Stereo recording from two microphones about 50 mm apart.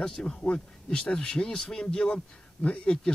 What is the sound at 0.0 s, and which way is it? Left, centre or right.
Speech, centre.